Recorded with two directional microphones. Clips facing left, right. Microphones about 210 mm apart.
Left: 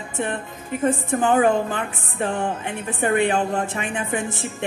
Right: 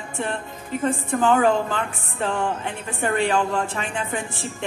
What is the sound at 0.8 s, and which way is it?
A woman's voice, 20° left (ahead or behind).